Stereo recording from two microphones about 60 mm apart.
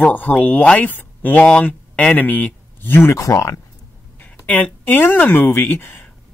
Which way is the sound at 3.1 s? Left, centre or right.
Left.